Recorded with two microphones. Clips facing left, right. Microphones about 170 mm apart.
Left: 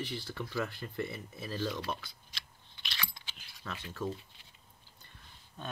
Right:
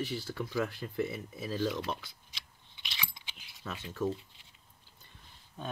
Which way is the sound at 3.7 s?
5° right (ahead or behind).